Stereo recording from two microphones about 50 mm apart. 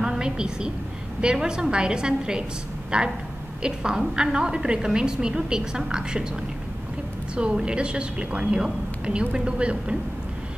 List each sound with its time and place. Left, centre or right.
0.0 s a woman's voice: centre
7.3 s a woman's voice: centre